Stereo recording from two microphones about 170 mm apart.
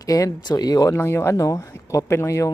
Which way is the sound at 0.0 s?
20° left (ahead or behind).